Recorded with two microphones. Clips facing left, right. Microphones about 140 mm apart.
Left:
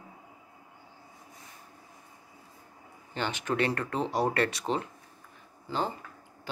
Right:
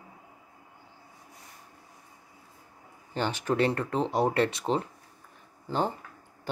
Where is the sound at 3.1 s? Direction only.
35° right (ahead or behind).